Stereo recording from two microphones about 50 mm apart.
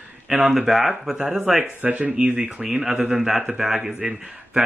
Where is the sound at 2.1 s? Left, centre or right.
Centre.